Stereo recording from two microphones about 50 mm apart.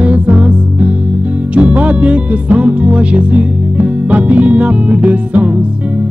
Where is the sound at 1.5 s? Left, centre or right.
Right.